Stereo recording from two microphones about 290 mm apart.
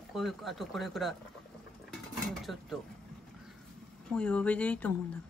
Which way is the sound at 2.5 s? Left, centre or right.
Centre.